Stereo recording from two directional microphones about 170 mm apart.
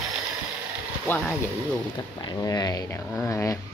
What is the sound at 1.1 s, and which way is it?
Speech, 15° left (ahead or behind).